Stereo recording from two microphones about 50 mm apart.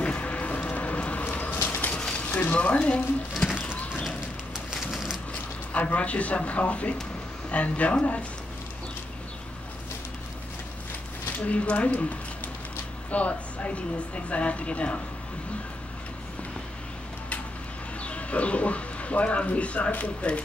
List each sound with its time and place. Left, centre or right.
0.0 s a sound: left
2.0 s a sound: centre
2.2 s speech: left
3.5 s clip-clop: left
4.7 s a sound: centre
5.7 s a woman's voice: left
11.4 s a woman's voice: left
13.1 s a woman's voice: left
18.0 s speech: left